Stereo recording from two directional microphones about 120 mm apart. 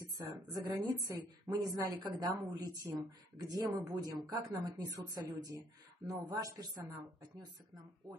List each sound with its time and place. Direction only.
0.0 s a woman's voice: 30° right (ahead or behind)